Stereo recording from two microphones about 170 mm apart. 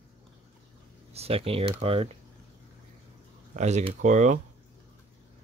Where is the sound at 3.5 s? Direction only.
40° right (ahead or behind).